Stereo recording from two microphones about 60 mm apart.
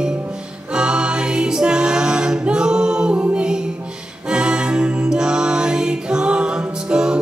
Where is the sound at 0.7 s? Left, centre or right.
Centre.